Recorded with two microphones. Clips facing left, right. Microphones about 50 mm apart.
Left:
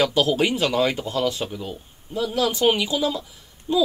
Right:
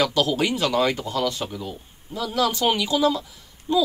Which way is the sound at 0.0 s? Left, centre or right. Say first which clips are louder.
Left 2 dB; left.